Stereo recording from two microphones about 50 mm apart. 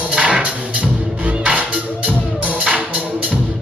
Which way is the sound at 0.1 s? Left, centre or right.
Right.